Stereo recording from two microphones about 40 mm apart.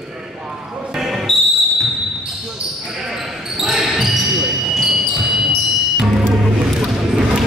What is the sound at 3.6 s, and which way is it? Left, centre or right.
Basketball bounce, centre.